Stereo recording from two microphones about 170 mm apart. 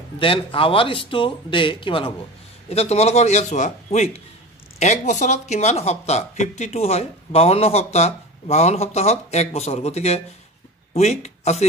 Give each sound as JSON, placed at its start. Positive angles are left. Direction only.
{"t": 0.2, "sound": "speech", "side_deg": 30}